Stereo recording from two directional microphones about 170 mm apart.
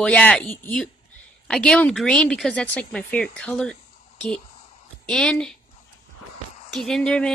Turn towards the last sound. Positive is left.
turn(degrees=5)  # may be behind; listen again after turning